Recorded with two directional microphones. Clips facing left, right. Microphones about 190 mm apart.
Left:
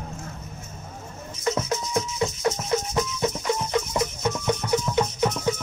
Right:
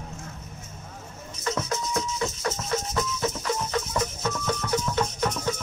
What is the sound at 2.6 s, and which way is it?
Music, 15° left (ahead or behind).